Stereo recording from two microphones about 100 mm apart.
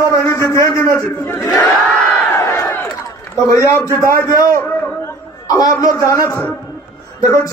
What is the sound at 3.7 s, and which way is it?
Speech, 25° left (ahead or behind).